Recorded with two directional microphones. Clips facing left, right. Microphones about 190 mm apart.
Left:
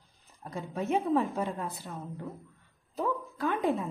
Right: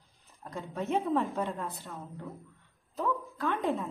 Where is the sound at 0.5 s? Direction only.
10° left (ahead or behind).